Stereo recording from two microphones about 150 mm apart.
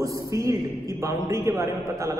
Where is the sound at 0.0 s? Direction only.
20° right (ahead or behind).